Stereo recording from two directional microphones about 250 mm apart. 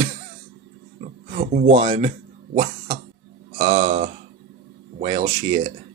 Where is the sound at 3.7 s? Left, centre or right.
Right.